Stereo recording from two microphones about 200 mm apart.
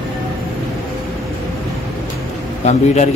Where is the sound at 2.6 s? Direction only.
35° left (ahead or behind).